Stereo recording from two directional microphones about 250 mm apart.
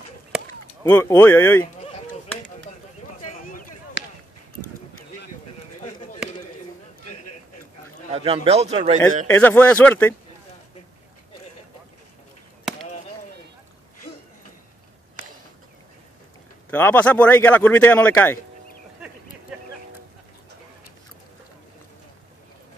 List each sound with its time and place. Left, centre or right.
0.8 s speech: centre
3.3 s a sound: left
4.0 s basketball bounce: left
4.6 s a sound: left
8.1 s a man's voice: right
9.3 s speech: centre
16.7 s speech: centre